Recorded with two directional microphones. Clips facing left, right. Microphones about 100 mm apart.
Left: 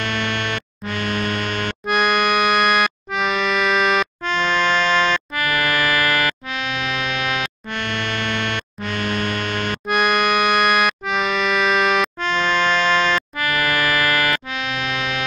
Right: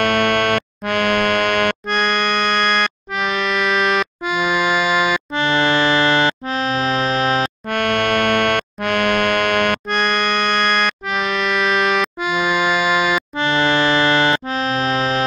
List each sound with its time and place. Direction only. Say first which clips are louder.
0.0 s music: right 8 dB; 55° right (ahead or behind)
1.9 s music: left 1 dB; 5° left (ahead or behind)
5.4 s music: right 6 dB; 25° right (ahead or behind)
7.7 s music: right 8 dB; 55° right (ahead or behind)
9.8 s music: left 1 dB; 5° left (ahead or behind)
13.4 s music: right 8 dB; 25° right (ahead or behind)